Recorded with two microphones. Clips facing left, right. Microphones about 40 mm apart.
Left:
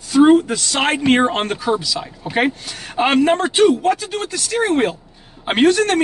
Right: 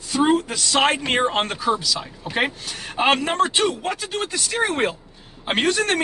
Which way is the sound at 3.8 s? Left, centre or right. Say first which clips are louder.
Left 6 dB; centre.